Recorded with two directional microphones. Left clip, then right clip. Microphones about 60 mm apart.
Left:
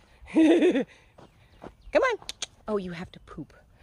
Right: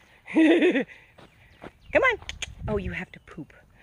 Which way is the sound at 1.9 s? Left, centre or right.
Centre.